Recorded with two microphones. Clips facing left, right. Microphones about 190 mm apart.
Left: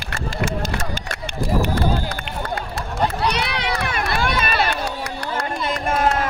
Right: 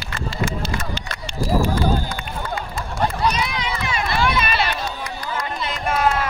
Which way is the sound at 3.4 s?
65° left (ahead or behind).